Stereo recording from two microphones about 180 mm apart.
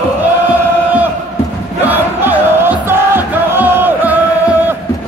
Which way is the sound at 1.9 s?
10° right (ahead or behind).